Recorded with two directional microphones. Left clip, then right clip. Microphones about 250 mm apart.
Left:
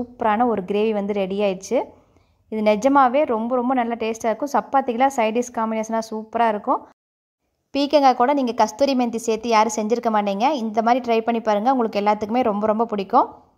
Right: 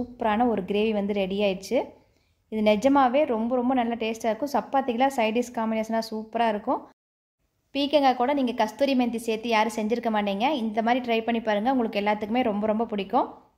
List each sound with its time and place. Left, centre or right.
0.2 s a woman's voice: centre